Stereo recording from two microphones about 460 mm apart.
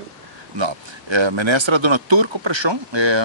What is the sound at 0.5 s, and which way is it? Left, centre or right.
Speech, right.